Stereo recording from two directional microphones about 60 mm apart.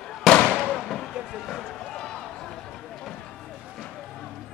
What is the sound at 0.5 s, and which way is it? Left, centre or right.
Fireworks, centre.